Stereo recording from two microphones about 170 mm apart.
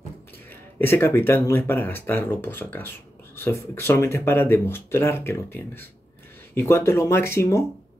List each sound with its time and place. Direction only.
0.5 s speech: 10° left (ahead or behind)